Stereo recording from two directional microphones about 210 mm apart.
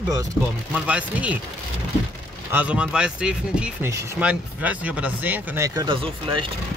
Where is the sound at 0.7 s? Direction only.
5° right (ahead or behind).